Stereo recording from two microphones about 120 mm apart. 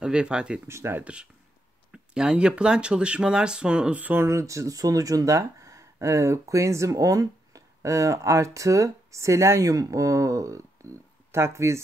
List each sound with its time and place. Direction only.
0.0 s speech: 10° right (ahead or behind)
0.7 s speech: 20° right (ahead or behind)